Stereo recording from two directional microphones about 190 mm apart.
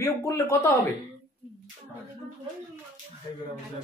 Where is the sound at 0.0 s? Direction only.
15° left (ahead or behind).